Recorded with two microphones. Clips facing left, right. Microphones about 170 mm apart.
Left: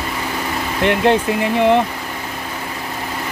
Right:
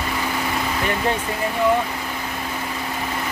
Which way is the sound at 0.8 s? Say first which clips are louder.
Left 10 dB; 80° left.